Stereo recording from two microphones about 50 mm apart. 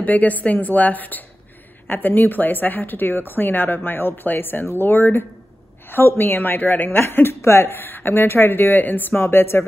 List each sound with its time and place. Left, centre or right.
0.0 s a woman's voice: left
7.0 s speech: left